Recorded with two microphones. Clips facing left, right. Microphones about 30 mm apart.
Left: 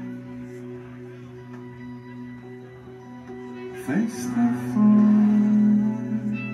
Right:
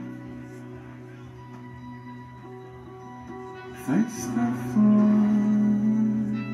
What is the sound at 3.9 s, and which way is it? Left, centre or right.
Speech, left.